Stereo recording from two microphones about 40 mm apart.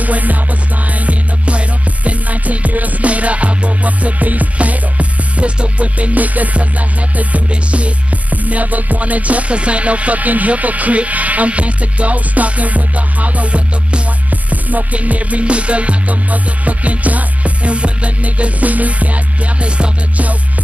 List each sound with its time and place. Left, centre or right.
0.0 s music: right